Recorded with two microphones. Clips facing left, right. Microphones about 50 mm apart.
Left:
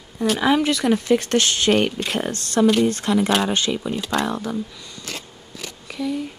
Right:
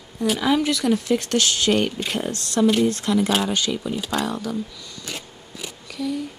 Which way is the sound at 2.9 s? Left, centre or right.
Left.